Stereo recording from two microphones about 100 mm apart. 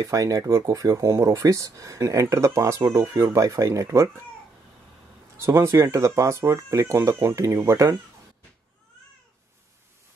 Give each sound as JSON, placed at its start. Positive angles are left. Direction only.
{"t": 0.0, "sound": "speech", "side_deg": -35}
{"t": 5.4, "sound": "speech", "side_deg": -30}